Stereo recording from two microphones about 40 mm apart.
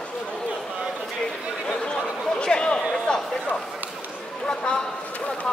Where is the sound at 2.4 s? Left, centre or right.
Left.